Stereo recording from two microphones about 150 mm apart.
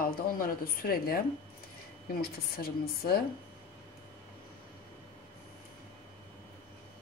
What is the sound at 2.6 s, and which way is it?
Speech, 90° left.